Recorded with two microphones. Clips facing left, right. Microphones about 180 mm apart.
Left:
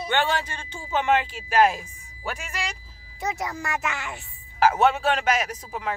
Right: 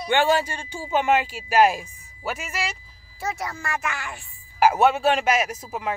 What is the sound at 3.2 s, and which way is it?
A child's voice, 20° left (ahead or behind).